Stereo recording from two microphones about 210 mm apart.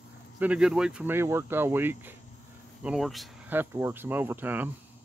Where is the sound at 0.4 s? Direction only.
5° right (ahead or behind).